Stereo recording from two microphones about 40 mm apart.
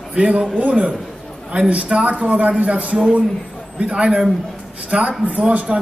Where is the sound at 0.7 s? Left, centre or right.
Right.